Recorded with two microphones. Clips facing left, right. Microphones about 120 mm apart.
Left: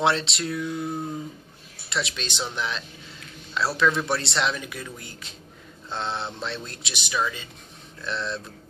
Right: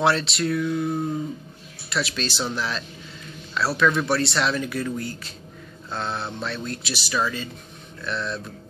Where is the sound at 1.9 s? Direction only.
25° left (ahead or behind).